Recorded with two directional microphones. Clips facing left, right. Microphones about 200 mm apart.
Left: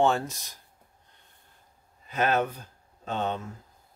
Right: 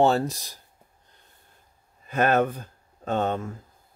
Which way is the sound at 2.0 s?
50° right (ahead or behind).